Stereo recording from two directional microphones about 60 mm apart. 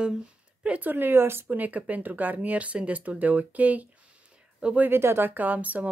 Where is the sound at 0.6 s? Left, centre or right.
Right.